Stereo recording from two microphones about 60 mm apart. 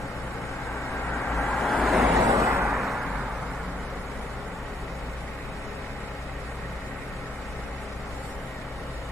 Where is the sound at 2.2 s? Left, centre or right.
Right.